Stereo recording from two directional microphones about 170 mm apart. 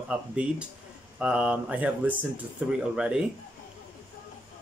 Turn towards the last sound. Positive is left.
turn(degrees=-5)  # may be behind; listen again after turning